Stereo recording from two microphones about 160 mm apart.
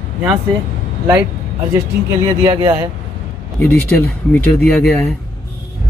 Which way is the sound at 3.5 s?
10° left (ahead or behind).